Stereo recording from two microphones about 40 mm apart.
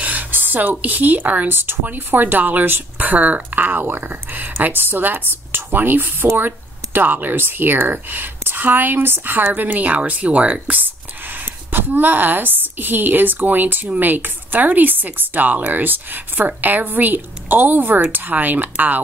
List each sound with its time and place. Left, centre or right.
0.0 s speech: right
1.5 s speech: right
3.1 s speech: right
3.4 s a woman's voice: right
10.8 s a woman's voice: right